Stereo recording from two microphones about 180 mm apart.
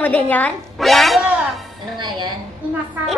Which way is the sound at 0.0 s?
10° left (ahead or behind).